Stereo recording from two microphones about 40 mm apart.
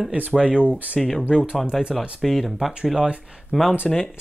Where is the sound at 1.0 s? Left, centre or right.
Centre.